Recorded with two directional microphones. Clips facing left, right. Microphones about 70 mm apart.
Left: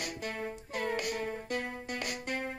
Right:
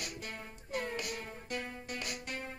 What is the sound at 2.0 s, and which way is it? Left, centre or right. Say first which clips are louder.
Music: left 7 dB; left.